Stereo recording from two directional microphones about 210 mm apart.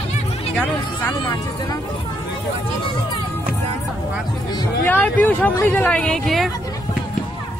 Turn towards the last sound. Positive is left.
turn(degrees=0)  # may be behind; listen again after turning